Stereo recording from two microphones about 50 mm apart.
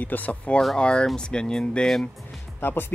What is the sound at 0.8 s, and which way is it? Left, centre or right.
Speech, centre.